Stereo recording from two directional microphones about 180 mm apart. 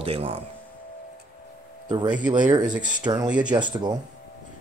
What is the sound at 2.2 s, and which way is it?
Speech, 25° right (ahead or behind).